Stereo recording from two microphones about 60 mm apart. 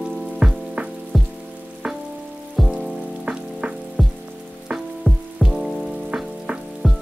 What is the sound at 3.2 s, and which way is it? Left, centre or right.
Frying, centre.